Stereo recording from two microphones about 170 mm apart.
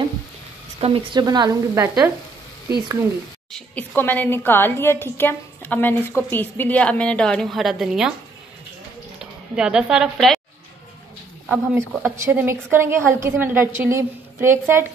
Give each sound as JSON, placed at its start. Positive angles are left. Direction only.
{"t": 0.7, "sound": "speech", "side_deg": -30}
{"t": 3.5, "sound": "a woman's voice", "side_deg": 10}
{"t": 9.2, "sound": "a woman's voice", "side_deg": -5}
{"t": 11.4, "sound": "speech", "side_deg": -10}